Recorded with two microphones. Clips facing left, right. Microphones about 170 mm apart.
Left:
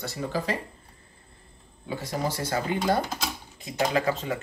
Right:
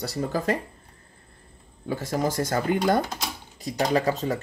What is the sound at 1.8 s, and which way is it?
Speech, 45° right (ahead or behind).